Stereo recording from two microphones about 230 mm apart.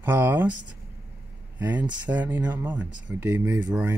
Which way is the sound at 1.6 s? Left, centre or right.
Centre.